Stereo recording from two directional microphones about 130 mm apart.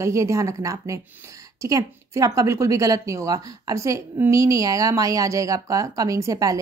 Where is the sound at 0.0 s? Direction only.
25° right (ahead or behind).